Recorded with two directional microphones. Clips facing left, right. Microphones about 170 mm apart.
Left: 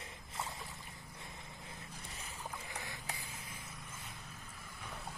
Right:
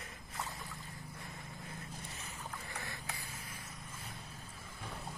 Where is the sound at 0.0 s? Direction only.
25° left (ahead or behind).